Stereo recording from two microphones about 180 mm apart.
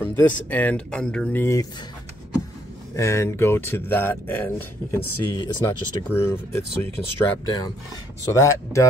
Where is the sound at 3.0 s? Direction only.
15° left (ahead or behind).